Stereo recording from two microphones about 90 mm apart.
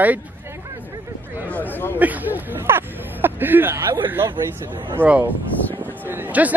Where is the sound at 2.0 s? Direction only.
20° right (ahead or behind).